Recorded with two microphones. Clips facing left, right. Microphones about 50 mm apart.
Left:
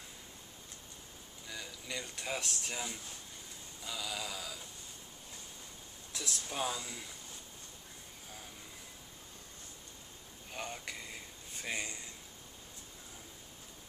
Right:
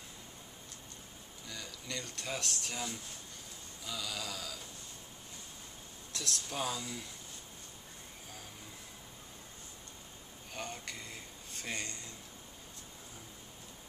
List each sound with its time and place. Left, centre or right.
1.5 s speech: centre
6.1 s speech: centre
10.5 s a sound: centre